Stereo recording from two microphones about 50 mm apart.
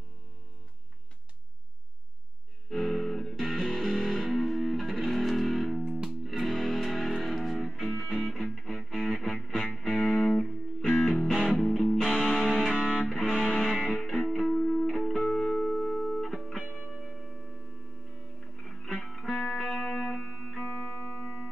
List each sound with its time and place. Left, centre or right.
2.7 s music: centre
13.2 s music: centre
13.8 s music: centre
16.6 s music: left
18.6 s music: centre
19.5 s music: centre
21.2 s music: left